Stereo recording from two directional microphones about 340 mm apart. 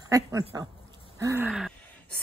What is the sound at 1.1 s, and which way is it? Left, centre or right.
Gasp, centre.